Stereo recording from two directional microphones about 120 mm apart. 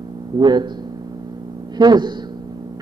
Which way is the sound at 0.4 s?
40° right (ahead or behind).